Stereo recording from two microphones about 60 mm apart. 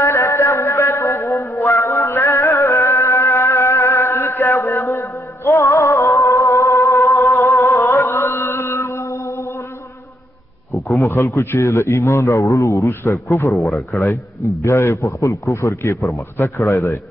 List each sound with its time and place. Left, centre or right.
0.0 s a sound: left
1.5 s music: left
8.1 s chant: left
10.7 s a sound: centre
11.3 s a man's voice: left
13.5 s speech: centre
14.0 s a man's voice: left